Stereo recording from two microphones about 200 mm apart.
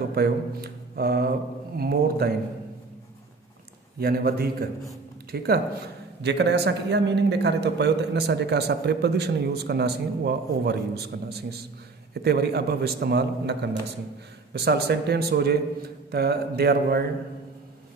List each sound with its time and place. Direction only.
0.1 s speech: 50° right (ahead or behind)
4.0 s a man's voice: 50° right (ahead or behind)